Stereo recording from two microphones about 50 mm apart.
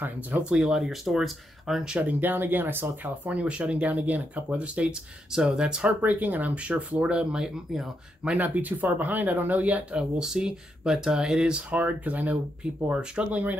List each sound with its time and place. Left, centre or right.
0.4 s speech: centre
0.7 s speech: centre
2.0 s speech: right
3.3 s speech: right
5.3 s speech: centre
6.0 s speech: right; by 7.6 s centre
8.4 s speech: right
10.1 s speech: centre; by 13.6 s right